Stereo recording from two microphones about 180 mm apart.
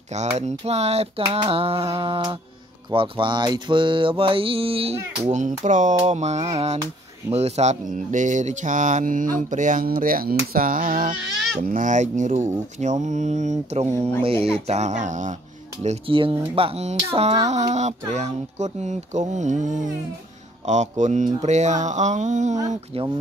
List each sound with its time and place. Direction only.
0.1 s mantra: 40° right (ahead or behind)
5.6 s mantra: 45° right (ahead or behind)
15.8 s mantra: 35° right (ahead or behind)